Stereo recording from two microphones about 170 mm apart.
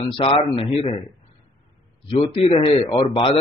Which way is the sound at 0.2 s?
35° left (ahead or behind).